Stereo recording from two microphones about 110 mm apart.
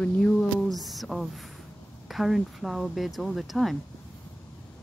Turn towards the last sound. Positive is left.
turn(degrees=0)  # may be behind; listen again after turning